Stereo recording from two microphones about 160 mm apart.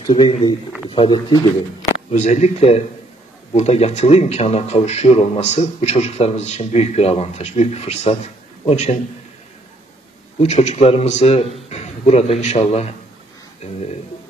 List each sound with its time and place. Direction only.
0.0 s speech: 30° left (ahead or behind)
2.1 s a man's voice: 45° left (ahead or behind)
10.4 s a man's voice: 45° left (ahead or behind)